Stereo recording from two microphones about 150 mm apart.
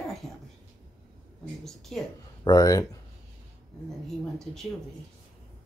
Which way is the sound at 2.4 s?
25° left (ahead or behind).